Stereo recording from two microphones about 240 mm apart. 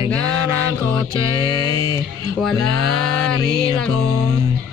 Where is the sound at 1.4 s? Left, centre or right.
Centre.